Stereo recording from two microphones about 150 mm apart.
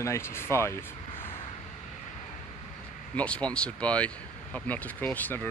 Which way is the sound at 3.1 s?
10° left (ahead or behind).